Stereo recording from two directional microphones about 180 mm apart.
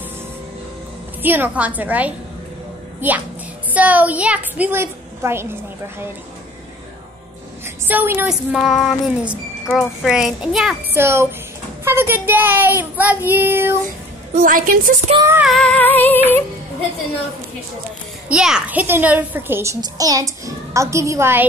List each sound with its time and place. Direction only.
1.2 s a child's voice: 10° right (ahead or behind)
7.6 s child singing: 10° right (ahead or behind)
10.9 s a child's voice: 15° right (ahead or behind)
14.3 s a woman's voice: 50° right (ahead or behind)
15.1 s a child's voice: 15° right (ahead or behind)
15.4 s female singing: 5° left (ahead or behind)
18.3 s a child's voice: 5° right (ahead or behind)